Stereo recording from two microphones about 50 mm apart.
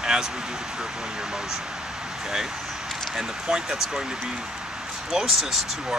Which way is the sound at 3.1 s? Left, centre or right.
Centre.